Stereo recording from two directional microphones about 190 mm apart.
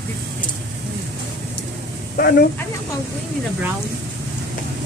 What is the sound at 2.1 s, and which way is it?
Speech, 50° left (ahead or behind).